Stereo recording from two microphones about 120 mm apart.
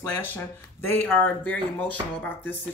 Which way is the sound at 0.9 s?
15° left (ahead or behind).